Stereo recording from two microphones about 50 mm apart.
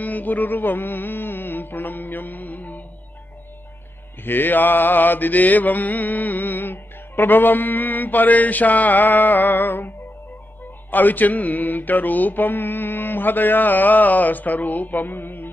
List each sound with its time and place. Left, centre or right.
0.0 s music: left
4.2 s mantra: left